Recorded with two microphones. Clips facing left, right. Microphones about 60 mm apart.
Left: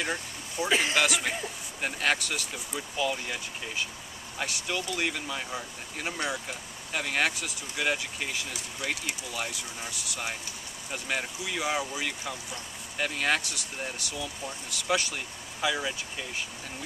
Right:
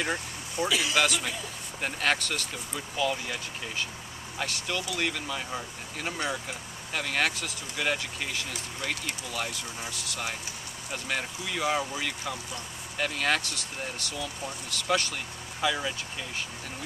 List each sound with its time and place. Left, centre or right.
0.0 s vehicle: centre
0.7 s speech: left
0.9 s a man's voice: centre